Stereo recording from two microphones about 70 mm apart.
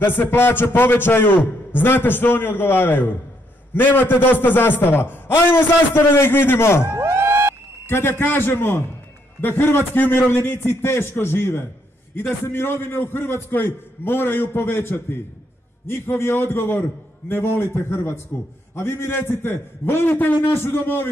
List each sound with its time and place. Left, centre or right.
0.0 s a man's voice: left
7.0 s a sound: right
7.8 s a man's voice: left